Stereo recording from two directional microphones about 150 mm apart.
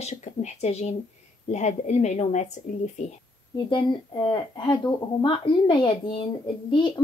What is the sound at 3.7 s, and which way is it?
A woman's voice, 30° left (ahead or behind).